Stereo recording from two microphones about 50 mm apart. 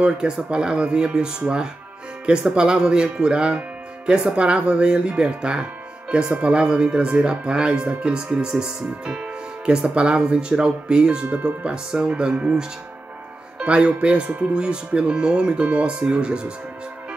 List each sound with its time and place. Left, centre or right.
0.2 s speech: centre
2.5 s speech: centre